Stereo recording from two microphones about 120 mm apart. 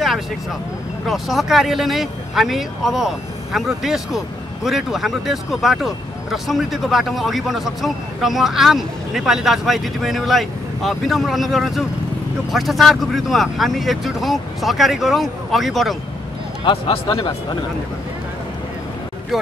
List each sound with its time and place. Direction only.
1.0 s speech: centre (ahead or behind)
16.6 s a man's voice: 50° left (ahead or behind)
19.3 s speech: centre (ahead or behind)